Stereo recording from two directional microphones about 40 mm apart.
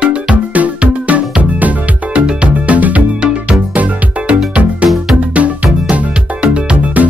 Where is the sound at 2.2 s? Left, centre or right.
Right.